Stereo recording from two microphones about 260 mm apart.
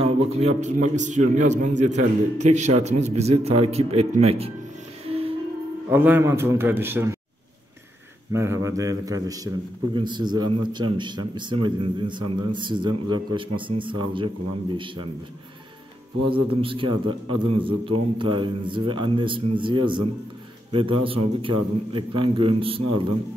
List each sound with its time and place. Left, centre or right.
0.4 s a man's voice: right
5.0 s music: right
5.9 s a man's voice: centre
8.3 s a man's voice: centre
16.3 s a man's voice: centre